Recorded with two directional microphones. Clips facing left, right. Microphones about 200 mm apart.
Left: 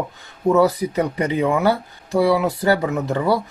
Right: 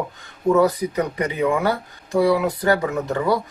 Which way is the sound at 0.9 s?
25° left (ahead or behind).